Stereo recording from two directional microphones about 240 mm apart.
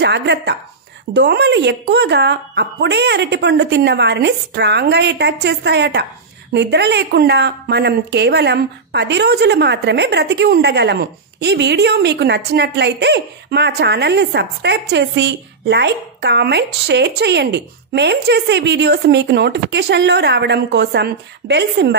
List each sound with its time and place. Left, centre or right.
0.0 s a woman's voice: right